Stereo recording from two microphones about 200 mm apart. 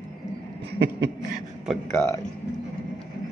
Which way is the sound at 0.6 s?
55° right (ahead or behind).